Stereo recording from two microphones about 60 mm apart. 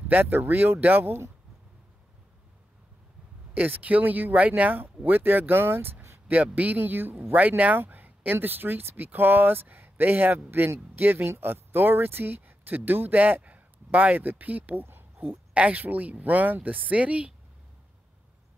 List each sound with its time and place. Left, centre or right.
0.1 s speech: right
3.5 s speech: right